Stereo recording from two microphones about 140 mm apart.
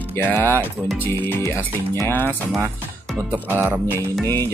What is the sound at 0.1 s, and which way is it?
Speech, 10° left (ahead or behind).